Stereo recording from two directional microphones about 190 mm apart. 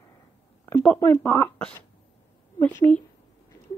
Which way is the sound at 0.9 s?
15° left (ahead or behind).